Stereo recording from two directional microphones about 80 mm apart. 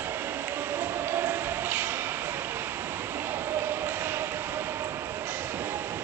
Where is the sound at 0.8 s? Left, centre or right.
Right.